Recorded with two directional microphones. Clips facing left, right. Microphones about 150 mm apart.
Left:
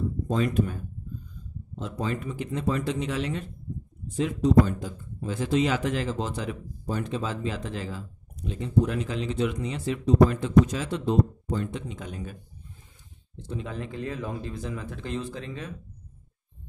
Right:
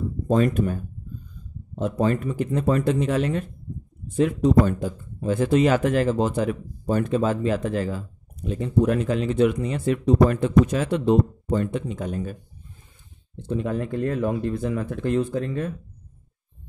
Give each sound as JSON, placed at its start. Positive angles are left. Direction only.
{"t": 0.3, "sound": "speech", "side_deg": -50}
{"t": 1.8, "sound": "speech", "side_deg": -50}
{"t": 13.4, "sound": "speech", "side_deg": -55}